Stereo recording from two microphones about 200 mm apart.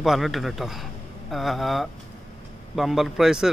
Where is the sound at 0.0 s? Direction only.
Centre (ahead or behind).